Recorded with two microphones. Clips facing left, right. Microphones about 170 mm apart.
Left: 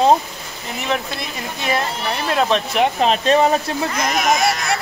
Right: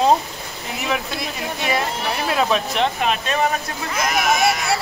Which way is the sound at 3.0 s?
30° left (ahead or behind).